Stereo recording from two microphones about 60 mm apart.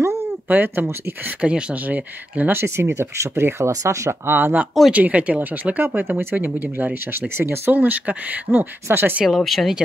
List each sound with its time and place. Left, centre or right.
0.5 s speech: right
1.2 s speech: right
2.6 s speech: right
4.3 s speech: right
4.9 s speech: right
7.7 s speech: right
9.2 s speech: centre